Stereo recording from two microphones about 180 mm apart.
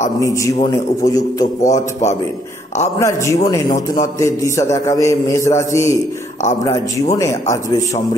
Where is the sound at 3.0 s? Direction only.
15° left (ahead or behind).